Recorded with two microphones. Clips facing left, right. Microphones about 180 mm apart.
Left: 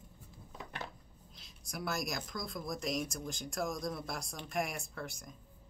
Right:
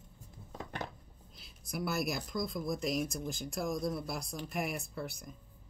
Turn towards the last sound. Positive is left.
turn(degrees=-5)  # may be behind; listen again after turning